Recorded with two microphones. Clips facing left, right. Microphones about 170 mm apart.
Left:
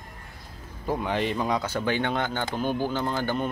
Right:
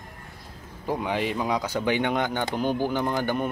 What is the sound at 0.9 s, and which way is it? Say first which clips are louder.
Speech: even; 10° right (ahead or behind).